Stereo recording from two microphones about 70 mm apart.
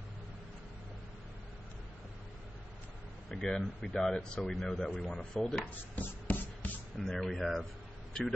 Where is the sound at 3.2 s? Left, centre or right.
Centre.